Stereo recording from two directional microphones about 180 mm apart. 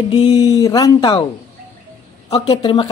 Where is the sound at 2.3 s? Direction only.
30° left (ahead or behind).